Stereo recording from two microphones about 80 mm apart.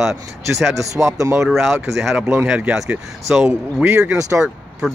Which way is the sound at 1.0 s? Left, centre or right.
Right.